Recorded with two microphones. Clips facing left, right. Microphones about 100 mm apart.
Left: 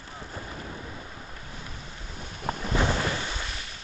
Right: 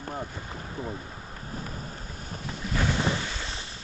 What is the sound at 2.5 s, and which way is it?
Wind noise, 50° left (ahead or behind).